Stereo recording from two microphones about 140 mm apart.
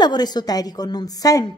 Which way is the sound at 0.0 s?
30° left (ahead or behind).